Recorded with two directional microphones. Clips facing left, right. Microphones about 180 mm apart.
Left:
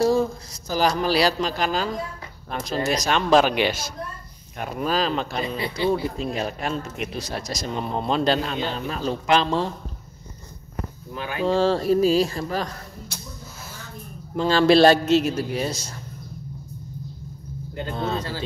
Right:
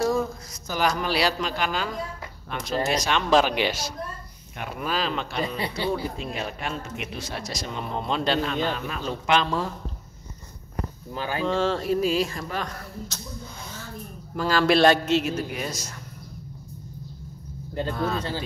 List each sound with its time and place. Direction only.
0.0 s a man's voice: 30° left (ahead or behind); by 3.9 s 55° left (ahead or behind)
4.7 s a man's voice: 40° left (ahead or behind)
11.1 s speech: 35° right (ahead or behind)
11.4 s a man's voice: 35° left (ahead or behind)
13.1 s speech: 10° left (ahead or behind)
14.3 s a man's voice: 25° left (ahead or behind)
17.9 s speech: 25° left (ahead or behind)